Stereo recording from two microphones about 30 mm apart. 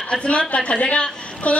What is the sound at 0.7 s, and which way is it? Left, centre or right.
Speech, left.